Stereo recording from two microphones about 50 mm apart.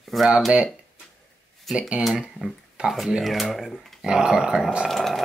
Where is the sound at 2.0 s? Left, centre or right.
Centre.